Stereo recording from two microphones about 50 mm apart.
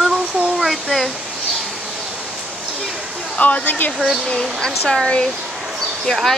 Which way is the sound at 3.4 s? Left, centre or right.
Left.